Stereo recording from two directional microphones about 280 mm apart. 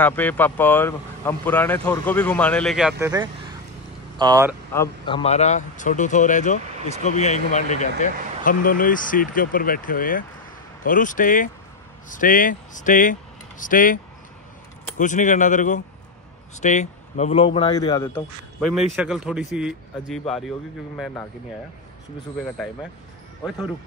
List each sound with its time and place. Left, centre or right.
0.0 s speech: centre
4.2 s speech: centre
4.7 s speech: centre
15.0 s a man's voice: left; by 21.3 s centre